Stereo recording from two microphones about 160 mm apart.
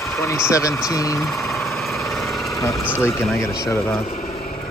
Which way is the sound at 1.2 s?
Centre (ahead or behind).